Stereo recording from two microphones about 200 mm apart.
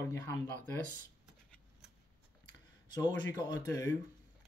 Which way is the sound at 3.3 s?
20° left (ahead or behind).